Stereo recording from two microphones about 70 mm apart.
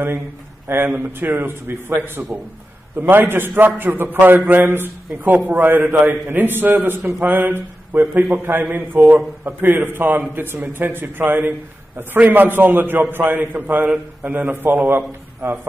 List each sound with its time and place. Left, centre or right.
0.7 s a man's voice: right